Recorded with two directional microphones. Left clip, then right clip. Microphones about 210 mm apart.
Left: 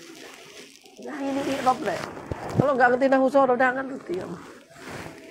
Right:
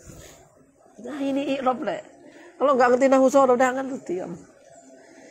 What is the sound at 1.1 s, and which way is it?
A woman's voice, 50° right (ahead or behind).